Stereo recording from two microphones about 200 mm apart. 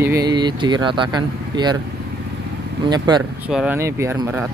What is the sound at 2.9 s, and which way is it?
Speech, 20° right (ahead or behind).